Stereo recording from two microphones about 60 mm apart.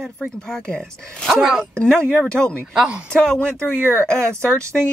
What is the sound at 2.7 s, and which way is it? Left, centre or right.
Speech, centre.